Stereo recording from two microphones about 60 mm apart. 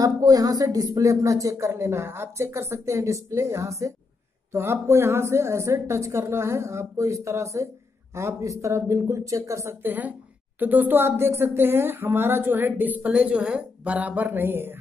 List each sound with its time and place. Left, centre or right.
0.0 s speech: right
1.7 s a woman's voice: right
9.8 s a woman's voice: right